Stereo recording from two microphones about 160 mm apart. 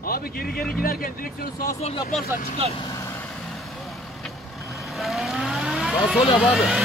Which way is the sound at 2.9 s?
20° left (ahead or behind).